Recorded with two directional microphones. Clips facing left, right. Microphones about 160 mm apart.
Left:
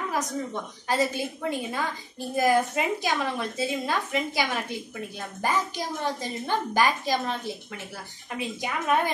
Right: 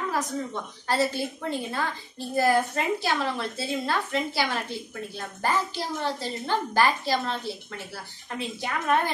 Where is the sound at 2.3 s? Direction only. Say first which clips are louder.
Even; 15° left (ahead or behind).